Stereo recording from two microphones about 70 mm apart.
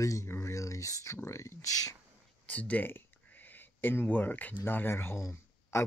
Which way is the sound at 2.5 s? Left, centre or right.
Left.